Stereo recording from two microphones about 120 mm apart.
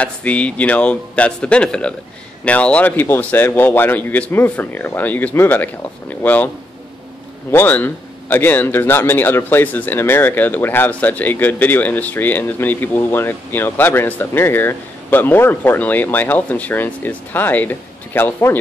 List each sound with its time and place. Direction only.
0.0 s a man's voice: 10° left (ahead or behind)
7.5 s a man's voice: 15° left (ahead or behind)